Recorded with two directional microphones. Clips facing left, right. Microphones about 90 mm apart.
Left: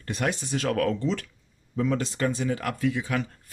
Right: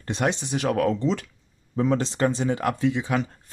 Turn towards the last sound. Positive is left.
turn(degrees=-25)  # may be behind; listen again after turning